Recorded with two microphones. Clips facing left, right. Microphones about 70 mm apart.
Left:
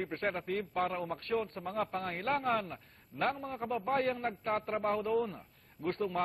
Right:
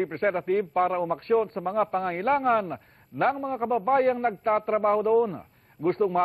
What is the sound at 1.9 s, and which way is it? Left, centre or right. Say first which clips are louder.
A man's voice: right 10 dB; right.